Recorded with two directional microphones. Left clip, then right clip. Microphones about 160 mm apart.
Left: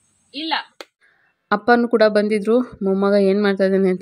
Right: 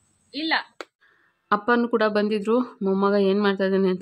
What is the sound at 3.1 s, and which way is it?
Speech, 25° left (ahead or behind).